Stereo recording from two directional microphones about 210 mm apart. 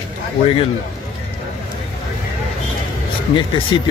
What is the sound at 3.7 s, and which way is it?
Speech, 20° left (ahead or behind).